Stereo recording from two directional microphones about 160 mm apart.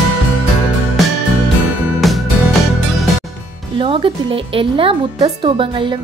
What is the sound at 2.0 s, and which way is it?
Music, centre (ahead or behind).